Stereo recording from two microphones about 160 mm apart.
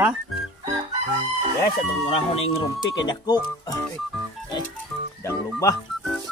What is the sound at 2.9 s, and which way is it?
Speech, 25° left (ahead or behind).